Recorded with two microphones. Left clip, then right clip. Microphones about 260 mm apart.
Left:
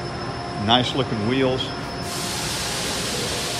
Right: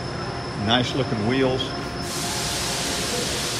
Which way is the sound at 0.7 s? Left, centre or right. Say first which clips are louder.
Left 3 dB; centre.